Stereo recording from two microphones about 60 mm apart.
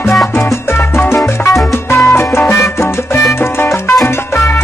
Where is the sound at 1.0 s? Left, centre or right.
Left.